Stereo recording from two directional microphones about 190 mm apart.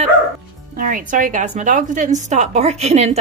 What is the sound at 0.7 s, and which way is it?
A woman's voice, 45° right (ahead or behind).